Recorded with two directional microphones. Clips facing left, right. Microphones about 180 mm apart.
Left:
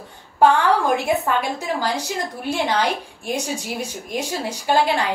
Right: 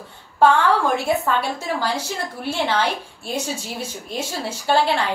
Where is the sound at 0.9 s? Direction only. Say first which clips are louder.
Even; 15° left (ahead or behind).